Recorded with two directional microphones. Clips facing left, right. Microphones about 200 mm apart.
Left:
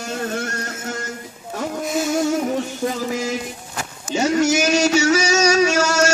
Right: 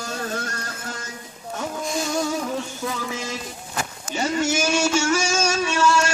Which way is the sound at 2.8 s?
40° left (ahead or behind).